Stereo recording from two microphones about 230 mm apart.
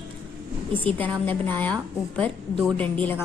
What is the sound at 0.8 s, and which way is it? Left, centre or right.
A woman's voice, centre.